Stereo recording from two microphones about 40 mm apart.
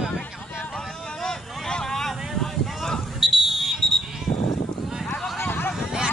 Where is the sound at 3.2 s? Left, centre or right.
Centre.